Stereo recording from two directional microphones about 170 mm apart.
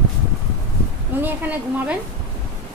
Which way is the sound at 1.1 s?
10° right (ahead or behind).